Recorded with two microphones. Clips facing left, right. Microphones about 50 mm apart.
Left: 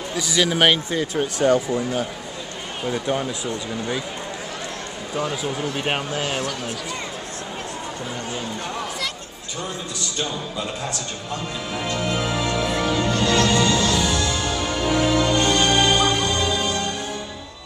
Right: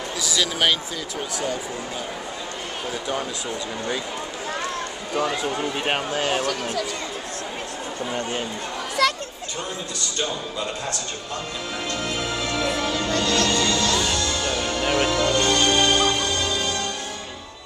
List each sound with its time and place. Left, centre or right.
0.2 s speech: left
0.9 s speech: left
2.9 s speech: centre
5.1 s speech: right
5.8 s speech: centre
9.0 s a sound: right
10.1 s speech: centre
11.9 s music: centre